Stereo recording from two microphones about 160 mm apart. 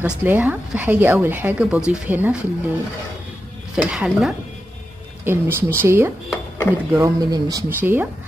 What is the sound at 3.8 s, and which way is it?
A woman's voice, 5° right (ahead or behind).